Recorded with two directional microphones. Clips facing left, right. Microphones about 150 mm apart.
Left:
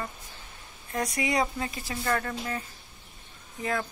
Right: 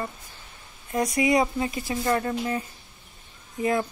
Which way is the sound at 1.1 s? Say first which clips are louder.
Right 6 dB; 15° right (ahead or behind).